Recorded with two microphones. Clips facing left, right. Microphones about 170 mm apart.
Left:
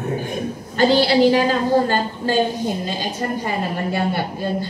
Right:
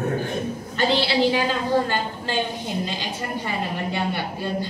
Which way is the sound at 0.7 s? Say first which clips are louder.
Left 6 dB; 40° left (ahead or behind).